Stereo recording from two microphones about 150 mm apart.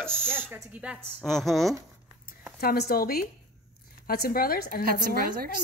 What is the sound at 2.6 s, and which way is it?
A woman's voice, 90° left.